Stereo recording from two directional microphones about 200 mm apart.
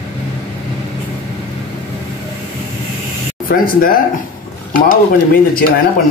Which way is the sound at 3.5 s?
45° left (ahead or behind).